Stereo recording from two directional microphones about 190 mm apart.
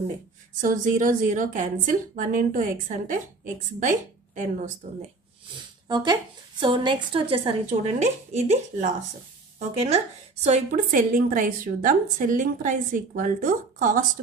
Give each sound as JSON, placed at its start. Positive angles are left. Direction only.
{"t": 0.6, "sound": "a woman's voice", "side_deg": -45}
{"t": 4.4, "sound": "speech", "side_deg": -40}
{"t": 5.9, "sound": "a woman's voice", "side_deg": -20}